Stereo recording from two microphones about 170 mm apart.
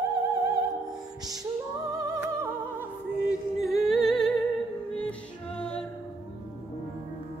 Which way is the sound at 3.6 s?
Centre (ahead or behind).